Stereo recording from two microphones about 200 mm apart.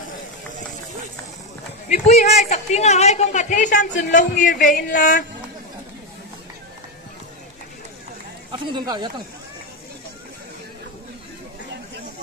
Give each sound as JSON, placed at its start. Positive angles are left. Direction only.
{"t": 1.9, "sound": "a woman's voice", "side_deg": 35}
{"t": 8.5, "sound": "a man's voice", "side_deg": -20}